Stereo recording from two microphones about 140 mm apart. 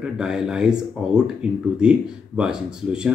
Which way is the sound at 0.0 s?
5° right (ahead or behind).